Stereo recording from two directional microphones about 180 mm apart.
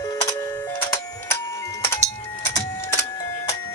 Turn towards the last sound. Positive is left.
turn(degrees=15)  # may be behind; listen again after turning